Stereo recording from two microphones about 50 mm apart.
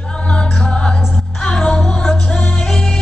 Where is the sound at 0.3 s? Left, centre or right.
Centre.